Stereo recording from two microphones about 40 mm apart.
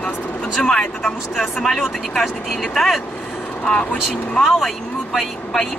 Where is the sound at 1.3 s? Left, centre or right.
Centre.